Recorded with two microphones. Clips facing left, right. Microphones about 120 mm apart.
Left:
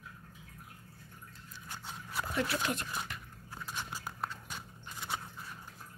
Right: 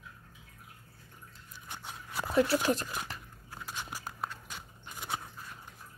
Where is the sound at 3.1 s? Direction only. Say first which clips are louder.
Right 1 dB; 30° right (ahead or behind).